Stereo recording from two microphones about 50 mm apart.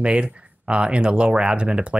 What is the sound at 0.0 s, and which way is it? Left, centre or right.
Speech, right.